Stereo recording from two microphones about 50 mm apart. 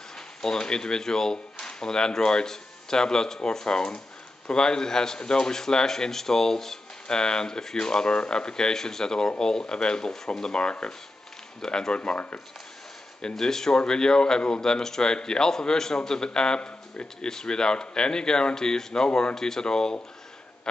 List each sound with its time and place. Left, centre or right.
0.4 s a man's voice: centre
13.3 s a man's voice: centre